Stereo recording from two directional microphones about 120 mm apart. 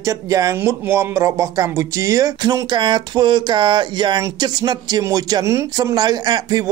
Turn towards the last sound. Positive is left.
turn(degrees=-35)  # may be behind; listen again after turning